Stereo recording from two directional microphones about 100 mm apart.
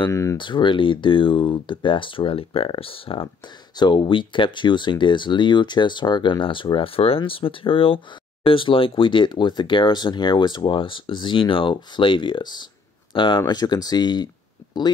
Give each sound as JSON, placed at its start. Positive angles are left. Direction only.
{"t": 0.1, "sound": "speech", "side_deg": 30}
{"t": 0.4, "sound": "speech", "side_deg": 55}
{"t": 3.7, "sound": "speech", "side_deg": 50}